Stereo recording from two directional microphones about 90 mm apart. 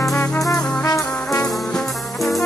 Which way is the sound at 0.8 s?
40° left (ahead or behind).